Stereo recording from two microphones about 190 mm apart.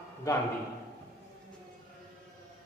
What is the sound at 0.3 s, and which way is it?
Speech, 15° left (ahead or behind).